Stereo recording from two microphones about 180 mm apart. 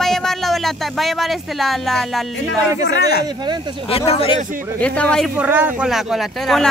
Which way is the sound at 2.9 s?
65° left (ahead or behind).